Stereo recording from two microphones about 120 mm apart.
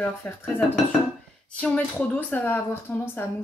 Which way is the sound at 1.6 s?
10° left (ahead or behind).